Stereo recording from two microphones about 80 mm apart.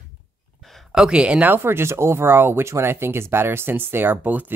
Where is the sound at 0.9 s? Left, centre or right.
Centre.